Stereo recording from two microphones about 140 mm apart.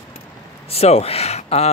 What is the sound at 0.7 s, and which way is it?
Speech, 45° left (ahead or behind).